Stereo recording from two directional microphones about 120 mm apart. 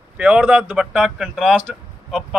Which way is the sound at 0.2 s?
10° right (ahead or behind).